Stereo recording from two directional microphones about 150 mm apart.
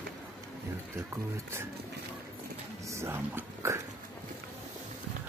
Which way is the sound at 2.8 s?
20° right (ahead or behind).